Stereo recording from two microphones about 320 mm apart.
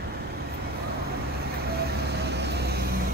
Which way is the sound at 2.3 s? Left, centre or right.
Right.